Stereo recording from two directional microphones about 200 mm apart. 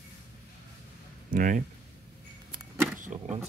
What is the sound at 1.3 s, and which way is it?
Speech, 40° right (ahead or behind).